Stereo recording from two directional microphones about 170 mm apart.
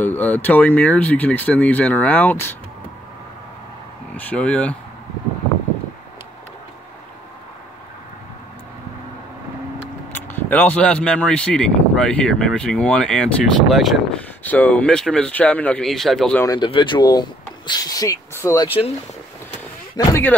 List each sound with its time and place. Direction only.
0.0 s speech: 10° left (ahead or behind)
4.2 s speech: 10° left (ahead or behind)
10.1 s speech: 10° left (ahead or behind)
16.4 s speech: 25° left (ahead or behind)
20.1 s speech: 15° left (ahead or behind)